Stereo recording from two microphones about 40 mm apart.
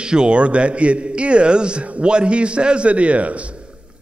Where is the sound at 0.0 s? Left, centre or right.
Right.